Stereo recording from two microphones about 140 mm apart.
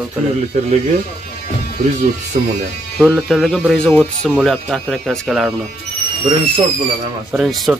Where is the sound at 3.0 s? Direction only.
Centre (ahead or behind).